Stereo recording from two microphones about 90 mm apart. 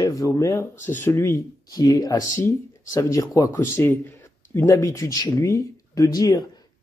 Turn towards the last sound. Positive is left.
turn(degrees=40)  # may be behind; listen again after turning